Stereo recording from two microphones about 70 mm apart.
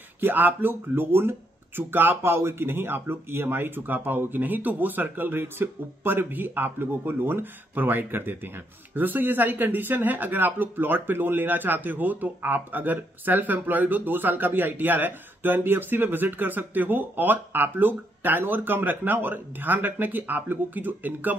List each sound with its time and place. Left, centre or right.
0.2 s speech: right